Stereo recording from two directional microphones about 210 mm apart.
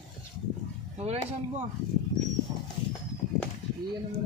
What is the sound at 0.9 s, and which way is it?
Speech, 30° right (ahead or behind).